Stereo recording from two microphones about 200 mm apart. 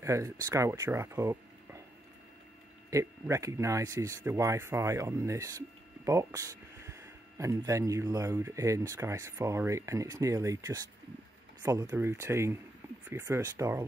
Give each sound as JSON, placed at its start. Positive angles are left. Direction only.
{"t": 0.0, "sound": "speech", "side_deg": -15}
{"t": 2.9, "sound": "speech", "side_deg": -15}